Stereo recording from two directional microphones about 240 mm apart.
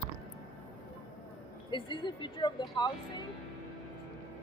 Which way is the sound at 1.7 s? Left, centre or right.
Centre.